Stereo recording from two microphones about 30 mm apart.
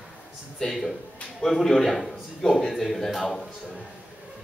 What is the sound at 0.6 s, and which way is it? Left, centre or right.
A man's voice, centre.